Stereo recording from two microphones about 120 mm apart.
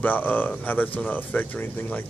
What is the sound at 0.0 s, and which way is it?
Speech, 15° left (ahead or behind).